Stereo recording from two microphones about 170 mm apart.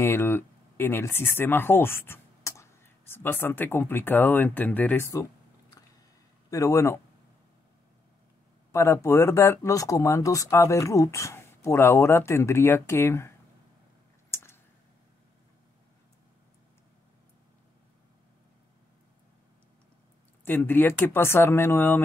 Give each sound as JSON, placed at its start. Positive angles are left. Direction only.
{"t": 0.0, "sound": "speech", "side_deg": 15}
{"t": 6.5, "sound": "speech", "side_deg": 20}
{"t": 8.7, "sound": "speech", "side_deg": 15}
{"t": 14.3, "sound": "a sound", "side_deg": 15}
{"t": 20.4, "sound": "speech", "side_deg": 10}